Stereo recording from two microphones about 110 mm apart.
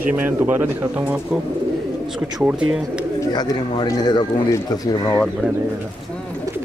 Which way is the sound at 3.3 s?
40° left (ahead or behind).